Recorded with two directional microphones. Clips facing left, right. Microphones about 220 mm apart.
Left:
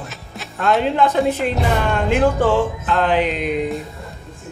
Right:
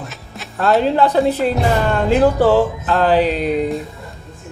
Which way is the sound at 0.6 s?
35° right (ahead or behind).